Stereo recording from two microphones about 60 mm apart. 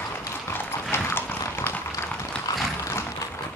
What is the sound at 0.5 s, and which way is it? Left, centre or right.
Clip-clop, left.